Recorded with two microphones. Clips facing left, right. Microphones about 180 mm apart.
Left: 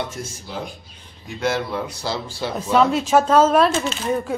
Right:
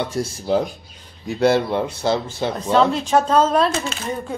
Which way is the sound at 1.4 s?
30° right (ahead or behind).